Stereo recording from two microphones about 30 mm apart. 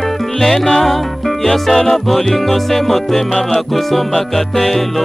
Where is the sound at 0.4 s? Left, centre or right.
Centre.